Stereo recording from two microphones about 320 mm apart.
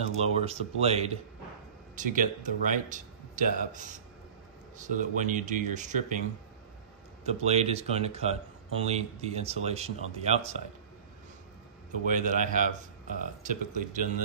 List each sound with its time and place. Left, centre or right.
0.0 s speech: centre
7.2 s speech: centre
12.1 s speech: right